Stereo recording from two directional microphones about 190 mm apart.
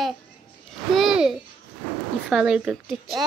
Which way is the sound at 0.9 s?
Centre (ahead or behind).